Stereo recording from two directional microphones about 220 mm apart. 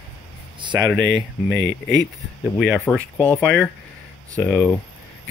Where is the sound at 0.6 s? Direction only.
20° right (ahead or behind).